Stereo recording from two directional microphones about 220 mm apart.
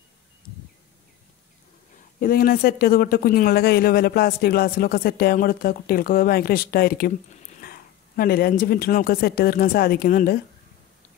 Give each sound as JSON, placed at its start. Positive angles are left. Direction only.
{"t": 2.1, "sound": "speech", "side_deg": 40}